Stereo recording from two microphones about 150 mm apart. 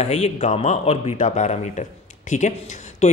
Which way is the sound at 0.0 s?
45° left (ahead or behind).